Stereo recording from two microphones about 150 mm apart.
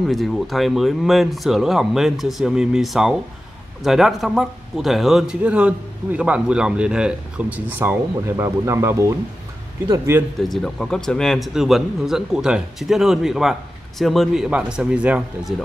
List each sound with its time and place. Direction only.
0.0 s a man's voice: centre (ahead or behind); by 10.2 s 20° right (ahead or behind)
10.5 s a man's voice: centre (ahead or behind)